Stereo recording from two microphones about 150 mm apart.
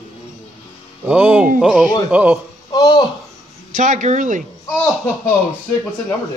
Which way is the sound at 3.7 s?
55° right (ahead or behind).